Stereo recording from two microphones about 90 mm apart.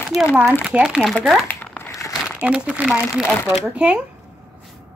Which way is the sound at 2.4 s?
15° right (ahead or behind).